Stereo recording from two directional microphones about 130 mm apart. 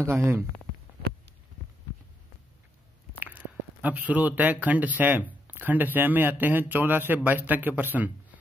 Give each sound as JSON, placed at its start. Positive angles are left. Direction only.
{"t": 0.0, "sound": "speech", "side_deg": -20}
{"t": 3.3, "sound": "a sound", "side_deg": -10}
{"t": 4.4, "sound": "speech", "side_deg": -10}